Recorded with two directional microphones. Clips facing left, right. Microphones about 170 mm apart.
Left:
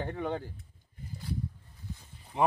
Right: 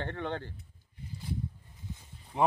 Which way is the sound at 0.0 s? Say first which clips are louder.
Left 2 dB; 10° left (ahead or behind).